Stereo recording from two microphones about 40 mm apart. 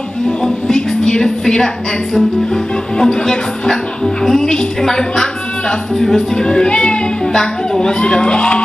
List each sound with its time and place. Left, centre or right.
0.4 s a woman's voice: centre
7.3 s speech: centre